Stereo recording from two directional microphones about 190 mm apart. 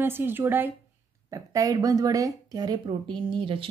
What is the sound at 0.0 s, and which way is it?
Speech, 10° right (ahead or behind).